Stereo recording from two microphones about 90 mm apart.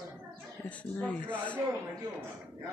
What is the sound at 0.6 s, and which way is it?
Speech, 15° left (ahead or behind).